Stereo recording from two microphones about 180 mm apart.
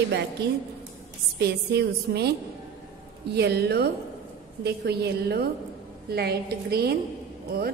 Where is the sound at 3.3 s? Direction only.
65° right (ahead or behind).